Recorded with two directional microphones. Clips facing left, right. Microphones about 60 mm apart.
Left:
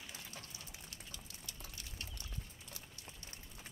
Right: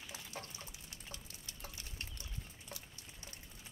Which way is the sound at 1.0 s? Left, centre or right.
Right.